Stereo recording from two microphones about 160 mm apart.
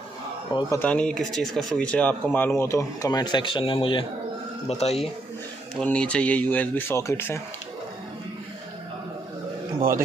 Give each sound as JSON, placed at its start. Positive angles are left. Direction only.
{"t": 0.5, "sound": "a man's voice", "side_deg": 25}
{"t": 0.7, "sound": "speech", "side_deg": 5}
{"t": 5.8, "sound": "speech", "side_deg": 5}